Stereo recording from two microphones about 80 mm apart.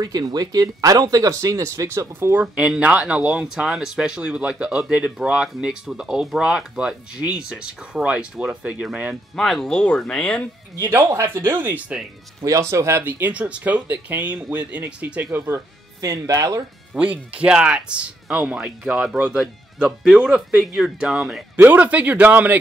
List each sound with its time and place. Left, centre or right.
0.0 s speech: right
2.3 s speech: centre
9.3 s speech: centre
10.8 s speech: right
12.4 s speech: right
13.0 s speech: centre
16.0 s speech: right
16.9 s speech: centre
21.5 s speech: right